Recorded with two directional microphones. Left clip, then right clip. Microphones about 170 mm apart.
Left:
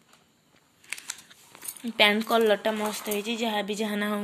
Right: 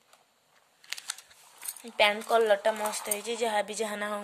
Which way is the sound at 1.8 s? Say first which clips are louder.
Left 3 dB; 10° right (ahead or behind).